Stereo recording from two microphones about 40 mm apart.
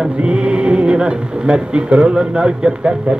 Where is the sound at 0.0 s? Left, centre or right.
Right.